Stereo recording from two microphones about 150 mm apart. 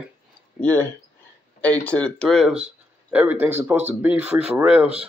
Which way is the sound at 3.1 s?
10° right (ahead or behind).